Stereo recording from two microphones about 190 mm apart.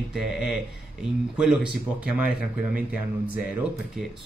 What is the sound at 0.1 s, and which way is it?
Speech, centre (ahead or behind).